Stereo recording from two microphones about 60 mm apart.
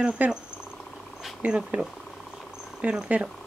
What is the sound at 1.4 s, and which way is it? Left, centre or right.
Speech, centre.